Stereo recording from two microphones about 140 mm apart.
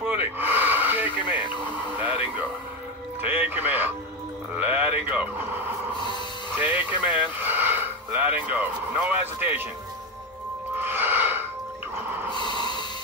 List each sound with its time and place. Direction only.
0.0 s gasp: 15° right (ahead or behind)
2.0 s radio: 10° right (ahead or behind)
3.2 s speech: 15° right (ahead or behind)
4.6 s a sound: 15° right (ahead or behind)
5.1 s speech: 10° right (ahead or behind)
10.8 s snort: 15° right (ahead or behind)
12.4 s snort: 35° left (ahead or behind)